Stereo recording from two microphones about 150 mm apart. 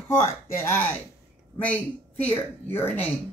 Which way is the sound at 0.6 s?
15° left (ahead or behind).